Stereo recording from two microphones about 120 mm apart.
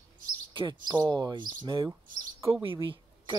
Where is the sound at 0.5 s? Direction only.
35° right (ahead or behind).